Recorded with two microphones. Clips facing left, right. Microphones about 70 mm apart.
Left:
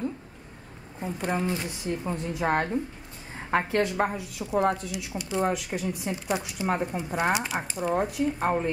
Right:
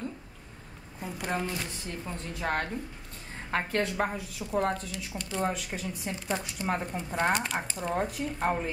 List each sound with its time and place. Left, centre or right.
0.9 s speech: left
3.7 s speech: centre